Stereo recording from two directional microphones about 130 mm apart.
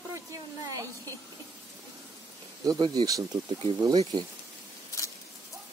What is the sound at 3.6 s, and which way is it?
Speech, 40° right (ahead or behind).